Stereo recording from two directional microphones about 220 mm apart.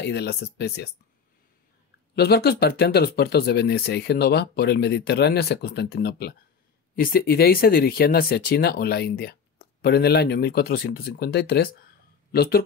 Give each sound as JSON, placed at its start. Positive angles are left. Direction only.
{"t": 0.0, "sound": "speech", "side_deg": 50}
{"t": 2.1, "sound": "speech", "side_deg": 45}